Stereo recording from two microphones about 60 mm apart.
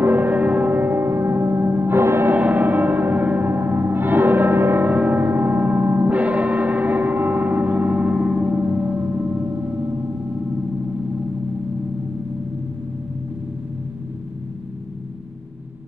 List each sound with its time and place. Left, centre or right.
0.0 s music: right
2.3 s gong: right
4.8 s music: right
9.5 s gong: right